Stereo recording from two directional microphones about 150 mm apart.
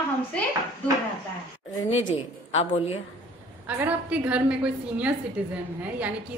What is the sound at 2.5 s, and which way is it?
Speech, 40° left (ahead or behind).